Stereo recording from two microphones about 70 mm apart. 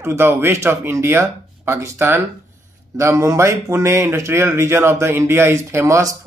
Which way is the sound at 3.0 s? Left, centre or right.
Right.